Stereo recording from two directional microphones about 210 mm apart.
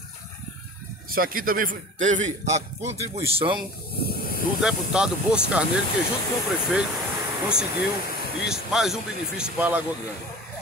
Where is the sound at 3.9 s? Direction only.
45° left (ahead or behind).